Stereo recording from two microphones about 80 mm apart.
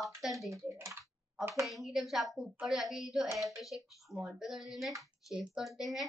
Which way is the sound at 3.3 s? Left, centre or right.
Right.